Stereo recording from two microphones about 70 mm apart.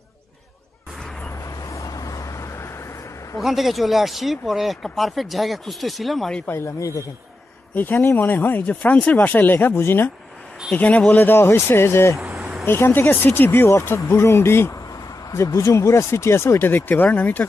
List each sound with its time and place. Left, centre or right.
1.4 s vehicle: left
3.4 s speech: centre
6.4 s speech: left
6.8 s a man's voice: left
7.7 s speech: left
10.8 s speech: centre
11.2 s speech: left
12.2 s vehicle: centre
12.6 s speech: left
13.7 s speech: left
15.3 s speech: left